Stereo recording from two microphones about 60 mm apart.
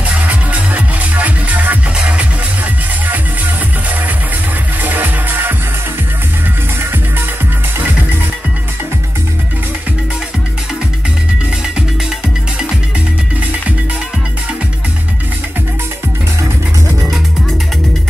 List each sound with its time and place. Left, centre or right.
0.2 s music: right
4.8 s music: right